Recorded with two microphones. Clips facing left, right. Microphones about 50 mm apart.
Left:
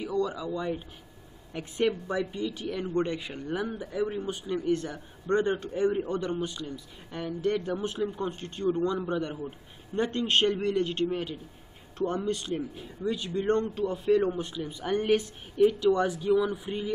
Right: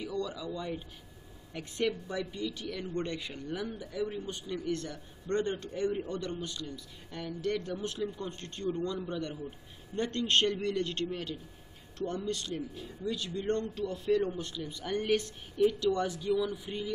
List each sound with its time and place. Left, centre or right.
0.0 s a man's voice: centre
9.9 s a man's voice: centre
12.0 s a man's voice: left